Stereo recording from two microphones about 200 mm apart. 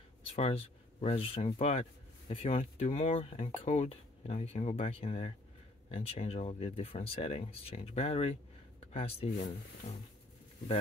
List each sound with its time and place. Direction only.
0.3 s speech: 30° left (ahead or behind)